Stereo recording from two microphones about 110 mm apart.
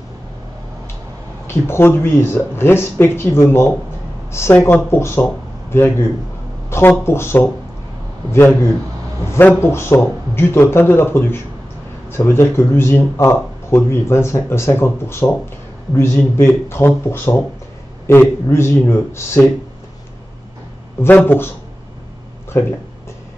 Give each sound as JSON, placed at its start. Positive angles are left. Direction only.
{"t": 1.5, "sound": "speech", "side_deg": 20}
{"t": 6.7, "sound": "a sound", "side_deg": 25}
{"t": 7.1, "sound": "speech", "side_deg": 20}
{"t": 21.0, "sound": "speech", "side_deg": 20}
{"t": 22.5, "sound": "speech", "side_deg": 25}